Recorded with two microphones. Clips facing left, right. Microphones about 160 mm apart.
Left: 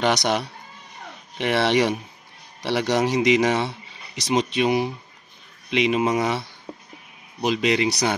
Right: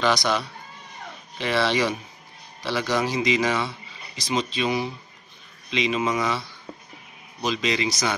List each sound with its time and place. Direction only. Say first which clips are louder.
0.0 s speech: left 1 dB; 65° left (ahead or behind)
1.4 s speech: left 3 dB; 60° left (ahead or behind)
7.4 s speech: left 4 dB; 60° left (ahead or behind)